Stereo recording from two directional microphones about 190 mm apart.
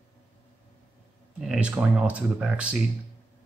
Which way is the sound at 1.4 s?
5° right (ahead or behind).